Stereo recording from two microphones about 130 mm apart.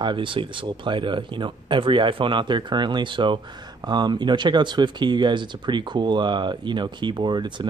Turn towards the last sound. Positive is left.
turn(degrees=-35)  # may be behind; listen again after turning